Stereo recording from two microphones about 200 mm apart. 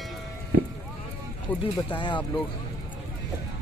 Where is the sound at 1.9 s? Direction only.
25° left (ahead or behind).